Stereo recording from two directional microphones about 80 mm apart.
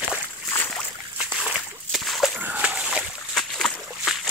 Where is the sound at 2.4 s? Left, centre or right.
Centre.